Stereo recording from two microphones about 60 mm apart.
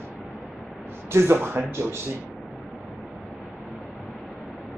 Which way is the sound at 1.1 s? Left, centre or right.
Right.